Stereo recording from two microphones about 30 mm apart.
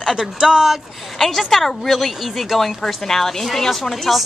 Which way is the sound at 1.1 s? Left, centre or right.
Centre.